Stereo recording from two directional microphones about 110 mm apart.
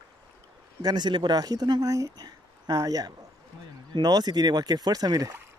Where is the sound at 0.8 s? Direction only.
40° right (ahead or behind).